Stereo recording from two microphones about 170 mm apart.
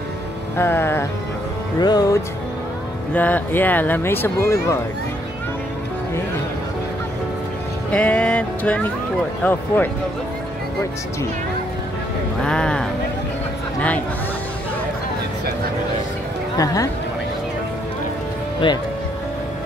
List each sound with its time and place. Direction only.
0.6 s speech: 15° left (ahead or behind)
1.8 s speech: 25° left (ahead or behind)
3.2 s speech: 10° left (ahead or behind)
7.9 s speech: 10° left (ahead or behind)
12.4 s speech: 5° left (ahead or behind)
16.5 s speech: 20° left (ahead or behind)